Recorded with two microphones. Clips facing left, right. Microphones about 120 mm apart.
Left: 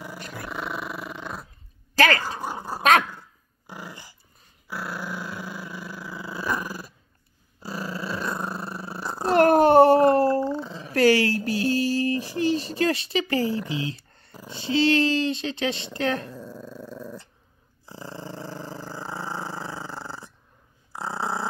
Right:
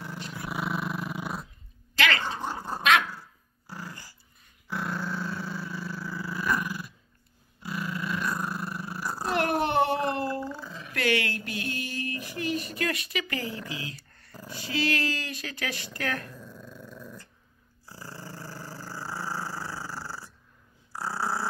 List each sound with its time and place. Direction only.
0.2 s dog: 50° left (ahead or behind)
0.5 s dog: 5° right (ahead or behind)
2.0 s speech: 40° left (ahead or behind)
2.2 s dog: 10° left (ahead or behind)
4.6 s dog: 5° left (ahead or behind); by 9.3 s 25° left (ahead or behind)
9.3 s a sound: 40° left (ahead or behind)
10.4 s a sound: 25° left (ahead or behind)
17.8 s dog: 20° left (ahead or behind)